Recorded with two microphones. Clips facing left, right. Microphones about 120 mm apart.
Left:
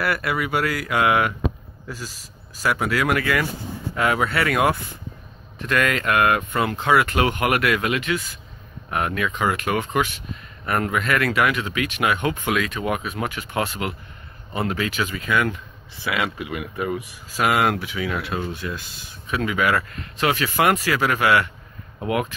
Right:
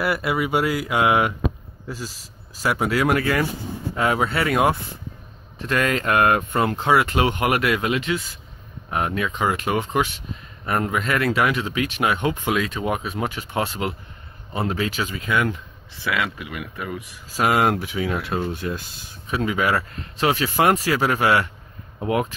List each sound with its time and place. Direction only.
0.0 s speech: 20° right (ahead or behind)
16.0 s speech: 10° left (ahead or behind)
17.4 s speech: 35° right (ahead or behind)
19.3 s speech: 30° right (ahead or behind)